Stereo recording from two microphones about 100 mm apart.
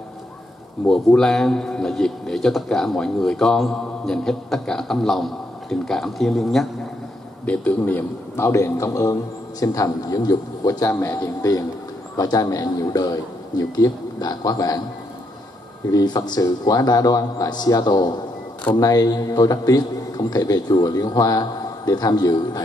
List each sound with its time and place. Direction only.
0.8 s a man's voice: 5° left (ahead or behind)
7.4 s a man's voice: 15° left (ahead or behind); by 10.9 s 40° left (ahead or behind)
10.9 s a man's voice: 25° left (ahead or behind)
15.9 s a man's voice: 40° left (ahead or behind)